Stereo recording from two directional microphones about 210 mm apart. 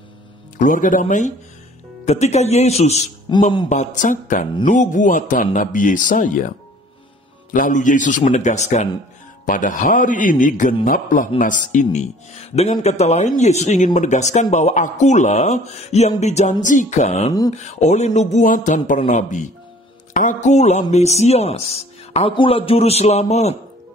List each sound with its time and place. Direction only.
0.6 s speech: 40° left (ahead or behind)
7.5 s speech: 40° left (ahead or behind)